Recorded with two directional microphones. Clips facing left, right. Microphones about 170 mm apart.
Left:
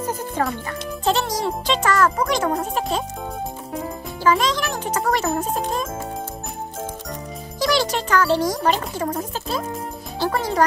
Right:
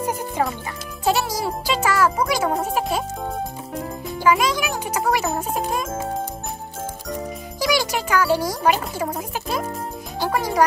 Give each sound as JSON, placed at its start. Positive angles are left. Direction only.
{"t": 0.4, "sound": "a child's voice", "side_deg": -10}
{"t": 4.2, "sound": "a child's voice", "side_deg": -10}
{"t": 7.6, "sound": "a child's voice", "side_deg": -10}